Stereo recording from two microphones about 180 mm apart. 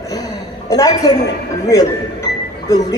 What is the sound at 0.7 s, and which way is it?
Speech, 20° left (ahead or behind).